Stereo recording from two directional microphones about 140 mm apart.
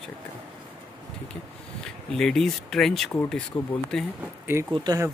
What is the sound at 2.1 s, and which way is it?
Speech, 5° left (ahead or behind).